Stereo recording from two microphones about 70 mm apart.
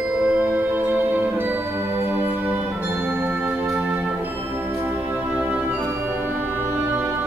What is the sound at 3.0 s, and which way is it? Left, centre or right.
Music, right.